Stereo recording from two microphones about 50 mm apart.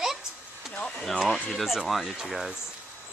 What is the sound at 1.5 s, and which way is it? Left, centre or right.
Speech, centre.